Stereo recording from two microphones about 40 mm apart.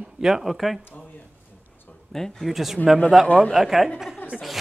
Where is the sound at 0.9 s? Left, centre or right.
Left.